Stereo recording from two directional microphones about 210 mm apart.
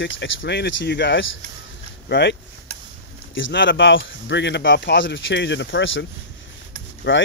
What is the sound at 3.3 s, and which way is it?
Speech, 60° left (ahead or behind).